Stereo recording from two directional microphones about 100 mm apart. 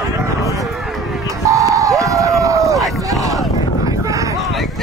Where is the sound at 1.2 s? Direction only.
35° right (ahead or behind).